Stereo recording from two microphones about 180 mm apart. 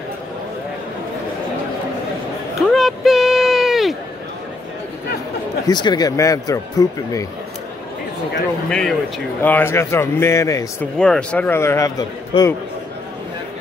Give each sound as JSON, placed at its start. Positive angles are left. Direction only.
{"t": 2.7, "sound": "a sound", "side_deg": 0}
{"t": 5.7, "sound": "speech", "side_deg": 25}
{"t": 8.6, "sound": "speech", "side_deg": 5}
{"t": 11.0, "sound": "speech", "side_deg": 5}